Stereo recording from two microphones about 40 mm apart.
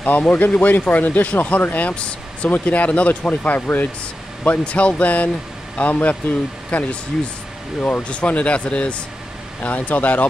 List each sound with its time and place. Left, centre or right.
0.0 s speech: left
1.9 s speech: left
2.5 s speech: left
4.6 s speech: left
9.6 s speech: left